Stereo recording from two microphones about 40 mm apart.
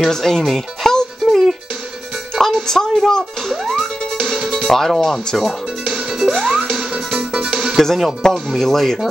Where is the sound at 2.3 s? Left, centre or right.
Centre.